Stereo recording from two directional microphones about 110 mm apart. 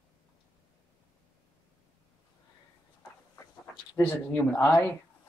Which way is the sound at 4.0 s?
15° left (ahead or behind).